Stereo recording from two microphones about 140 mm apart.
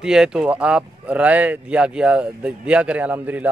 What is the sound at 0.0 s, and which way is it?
A man's voice, 5° right (ahead or behind).